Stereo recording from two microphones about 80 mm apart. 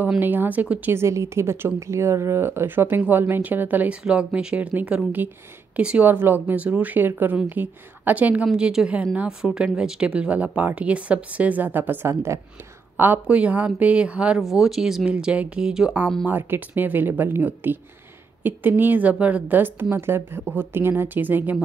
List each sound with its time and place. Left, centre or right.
0.2 s a woman's voice: right
0.9 s a woman's voice: right
4.0 s speech: centre
6.0 s a woman's voice: right
8.5 s a woman's voice: centre
16.3 s a woman's voice: right